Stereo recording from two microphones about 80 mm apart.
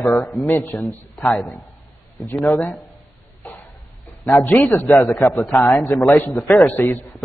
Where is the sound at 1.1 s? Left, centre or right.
Centre.